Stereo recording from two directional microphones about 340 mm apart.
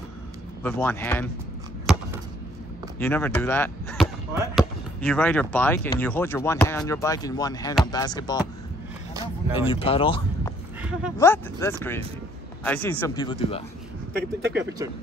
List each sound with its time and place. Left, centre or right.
0.7 s speech: centre
1.9 s a sound: centre
3.0 s speech: centre
9.5 s speech: centre
10.8 s dog: centre
11.1 s speech: centre
14.1 s speech: right